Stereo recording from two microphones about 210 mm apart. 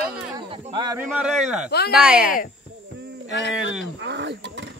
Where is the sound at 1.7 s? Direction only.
50° left (ahead or behind).